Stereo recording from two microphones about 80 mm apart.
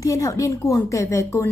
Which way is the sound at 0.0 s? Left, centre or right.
Left.